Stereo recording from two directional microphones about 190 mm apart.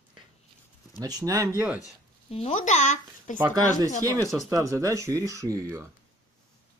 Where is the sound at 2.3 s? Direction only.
30° left (ahead or behind).